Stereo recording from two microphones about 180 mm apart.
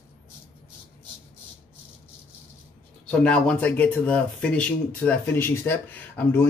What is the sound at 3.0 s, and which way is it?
Speech, 5° left (ahead or behind).